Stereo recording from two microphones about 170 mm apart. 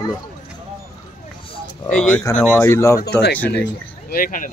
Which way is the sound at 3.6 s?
60° left (ahead or behind).